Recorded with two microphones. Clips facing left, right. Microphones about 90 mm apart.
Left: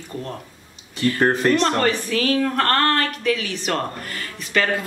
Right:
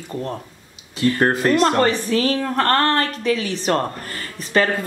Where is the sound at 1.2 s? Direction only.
5° right (ahead or behind).